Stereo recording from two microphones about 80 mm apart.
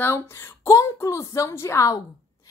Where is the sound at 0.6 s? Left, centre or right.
Left.